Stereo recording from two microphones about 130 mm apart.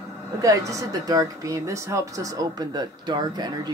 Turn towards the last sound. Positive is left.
turn(degrees=-30)  # may be behind; listen again after turning